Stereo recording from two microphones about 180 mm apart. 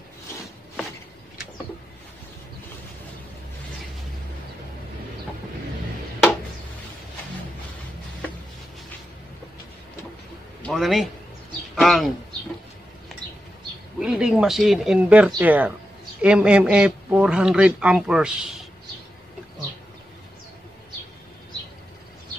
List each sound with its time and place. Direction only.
10.6 s a man's voice: centre (ahead or behind)
13.9 s speech: 5° right (ahead or behind)